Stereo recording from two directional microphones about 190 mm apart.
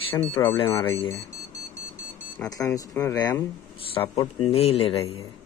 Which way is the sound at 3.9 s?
30° left (ahead or behind).